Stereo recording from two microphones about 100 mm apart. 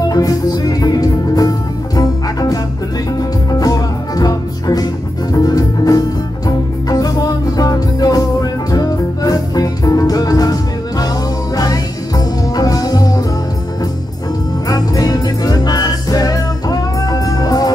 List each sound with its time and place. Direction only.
0.1 s music: 40° left (ahead or behind)
3.2 s music: 40° left (ahead or behind)
14.7 s music: 35° left (ahead or behind)